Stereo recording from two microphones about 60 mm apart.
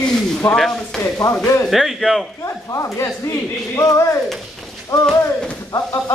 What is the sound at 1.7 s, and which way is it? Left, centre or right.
Speech, centre.